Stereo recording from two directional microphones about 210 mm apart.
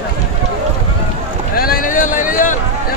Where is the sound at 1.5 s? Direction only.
45° left (ahead or behind).